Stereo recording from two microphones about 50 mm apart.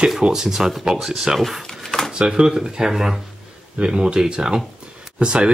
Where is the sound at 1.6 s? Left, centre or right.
Centre.